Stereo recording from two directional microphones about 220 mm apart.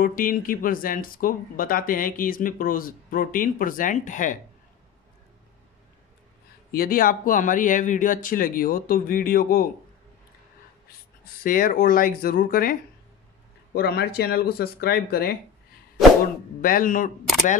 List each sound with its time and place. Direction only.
0.0 s speech: 40° left (ahead or behind)
6.7 s speech: 40° left (ahead or behind)
11.4 s speech: 40° left (ahead or behind)
13.7 s speech: 45° left (ahead or behind)
16.6 s speech: 40° left (ahead or behind)